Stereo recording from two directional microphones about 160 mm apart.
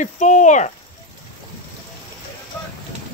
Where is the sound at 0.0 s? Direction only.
50° left (ahead or behind).